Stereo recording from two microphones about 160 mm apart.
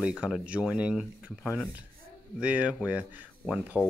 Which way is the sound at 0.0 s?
5° right (ahead or behind).